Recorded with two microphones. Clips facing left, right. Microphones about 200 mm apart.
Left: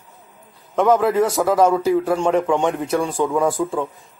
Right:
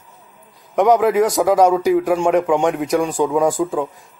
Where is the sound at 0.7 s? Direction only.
15° right (ahead or behind).